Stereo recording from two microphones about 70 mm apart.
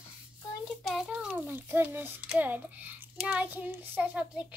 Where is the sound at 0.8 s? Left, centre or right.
Centre.